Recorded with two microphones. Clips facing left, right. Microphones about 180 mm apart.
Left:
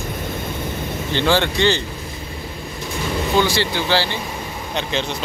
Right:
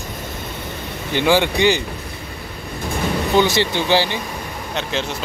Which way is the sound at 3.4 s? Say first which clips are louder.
Right 2 dB; 20° right (ahead or behind).